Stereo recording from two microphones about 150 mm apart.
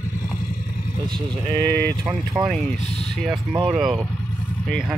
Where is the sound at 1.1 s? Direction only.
25° right (ahead or behind).